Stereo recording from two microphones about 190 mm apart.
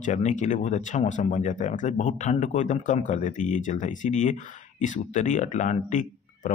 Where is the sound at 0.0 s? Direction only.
40° left (ahead or behind).